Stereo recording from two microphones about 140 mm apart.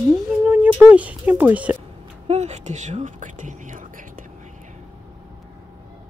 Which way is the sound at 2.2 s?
50° right (ahead or behind).